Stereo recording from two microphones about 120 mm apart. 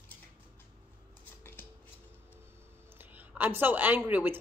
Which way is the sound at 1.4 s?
20° left (ahead or behind).